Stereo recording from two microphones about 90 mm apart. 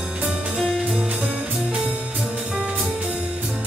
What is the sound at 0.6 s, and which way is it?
Music, 5° left (ahead or behind).